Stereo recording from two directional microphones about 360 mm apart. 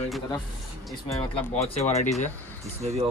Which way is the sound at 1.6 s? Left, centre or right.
Centre.